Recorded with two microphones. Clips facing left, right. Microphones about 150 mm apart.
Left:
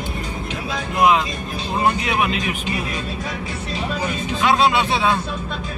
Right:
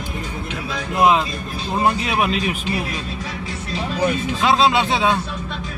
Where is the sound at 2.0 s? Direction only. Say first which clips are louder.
Right 1 dB; 35° right (ahead or behind).